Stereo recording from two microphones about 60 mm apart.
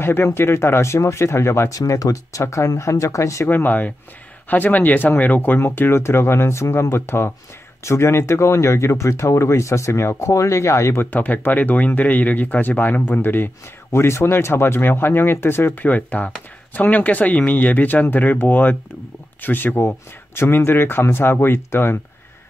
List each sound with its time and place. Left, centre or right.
0.0 s speech: left
1.7 s speech: left
2.4 s speech: left
3.4 s speech: left
5.8 s speech: left
11.1 s speech: left
13.9 s speech: left
15.7 s speech: left